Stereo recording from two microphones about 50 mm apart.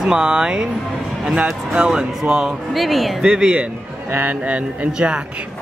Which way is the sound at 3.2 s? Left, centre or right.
Centre.